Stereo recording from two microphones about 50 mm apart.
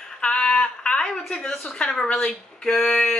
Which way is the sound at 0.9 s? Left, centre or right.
Centre.